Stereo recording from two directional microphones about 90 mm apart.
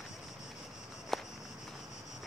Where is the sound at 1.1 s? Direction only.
Centre (ahead or behind).